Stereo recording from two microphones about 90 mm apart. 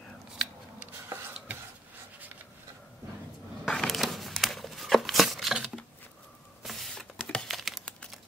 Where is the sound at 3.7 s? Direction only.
5° left (ahead or behind).